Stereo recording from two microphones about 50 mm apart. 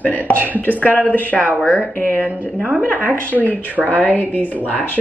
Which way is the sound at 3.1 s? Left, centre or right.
Right.